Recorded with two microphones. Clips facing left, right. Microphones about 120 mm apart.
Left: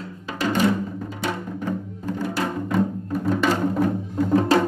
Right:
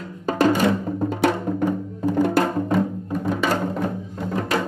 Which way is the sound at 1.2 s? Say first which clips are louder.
Right 7 dB; 65° right (ahead or behind).